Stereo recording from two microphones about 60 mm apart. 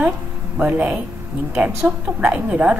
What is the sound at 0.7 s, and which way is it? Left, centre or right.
Speech, right.